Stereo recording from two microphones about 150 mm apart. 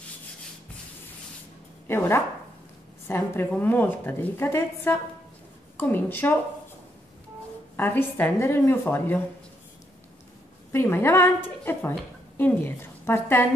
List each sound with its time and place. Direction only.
1.9 s a woman's voice: 15° left (ahead or behind)
7.7 s a woman's voice: 15° left (ahead or behind)
10.7 s a woman's voice: 15° left (ahead or behind)